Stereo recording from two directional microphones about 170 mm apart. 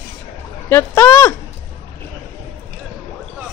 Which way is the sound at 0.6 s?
15° left (ahead or behind).